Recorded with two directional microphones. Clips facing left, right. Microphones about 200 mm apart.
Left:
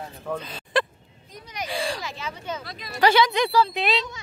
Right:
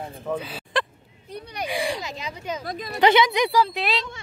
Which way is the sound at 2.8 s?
20° right (ahead or behind).